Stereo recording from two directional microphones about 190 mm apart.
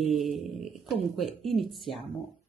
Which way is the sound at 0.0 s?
Centre (ahead or behind).